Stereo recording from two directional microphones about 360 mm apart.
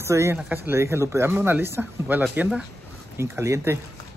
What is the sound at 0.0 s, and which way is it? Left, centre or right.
Speech, centre.